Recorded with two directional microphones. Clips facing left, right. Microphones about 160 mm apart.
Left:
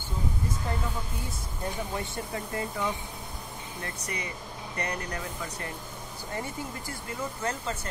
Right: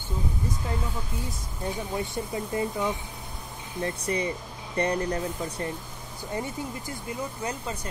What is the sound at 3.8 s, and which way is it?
Speech, 30° right (ahead or behind).